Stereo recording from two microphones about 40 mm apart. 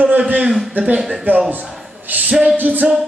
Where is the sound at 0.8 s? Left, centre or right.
Right.